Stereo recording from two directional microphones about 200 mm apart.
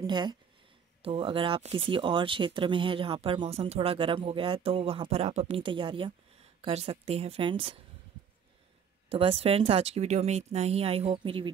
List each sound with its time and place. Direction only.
0.0 s speech: 20° right (ahead or behind)
9.1 s speech: 30° right (ahead or behind)